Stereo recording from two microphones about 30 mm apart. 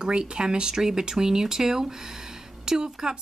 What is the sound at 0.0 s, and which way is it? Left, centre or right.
Speech, right.